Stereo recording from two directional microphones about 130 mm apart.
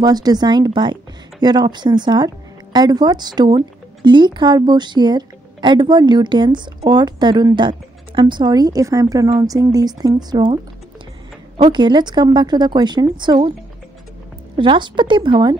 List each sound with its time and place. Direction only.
0.0 s speech: 30° right (ahead or behind)
14.6 s speech: 40° right (ahead or behind)